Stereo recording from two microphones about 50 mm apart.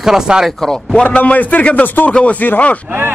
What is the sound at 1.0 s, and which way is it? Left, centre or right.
Speech, left.